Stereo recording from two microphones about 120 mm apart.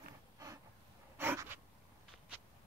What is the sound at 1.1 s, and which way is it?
Writing, 20° right (ahead or behind).